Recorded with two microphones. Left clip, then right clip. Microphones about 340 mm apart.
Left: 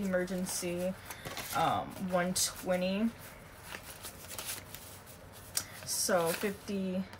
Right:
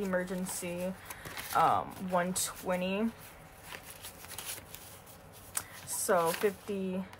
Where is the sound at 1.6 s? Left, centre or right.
Centre.